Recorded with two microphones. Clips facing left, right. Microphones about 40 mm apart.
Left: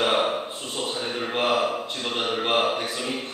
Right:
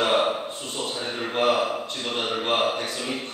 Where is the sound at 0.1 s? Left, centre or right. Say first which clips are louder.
Right 1 dB; centre.